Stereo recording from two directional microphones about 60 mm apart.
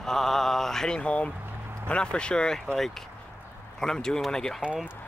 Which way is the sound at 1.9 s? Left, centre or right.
Centre.